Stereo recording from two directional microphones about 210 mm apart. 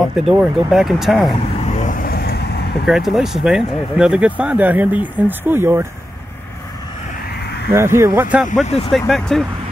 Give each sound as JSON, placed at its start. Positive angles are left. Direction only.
{"t": 0.0, "sound": "speech", "side_deg": 0}
{"t": 1.7, "sound": "vehicle", "side_deg": 40}
{"t": 2.9, "sound": "speech", "side_deg": 0}
{"t": 7.7, "sound": "speech", "side_deg": -15}
{"t": 8.6, "sound": "speech", "side_deg": 25}
{"t": 8.9, "sound": "speech", "side_deg": 0}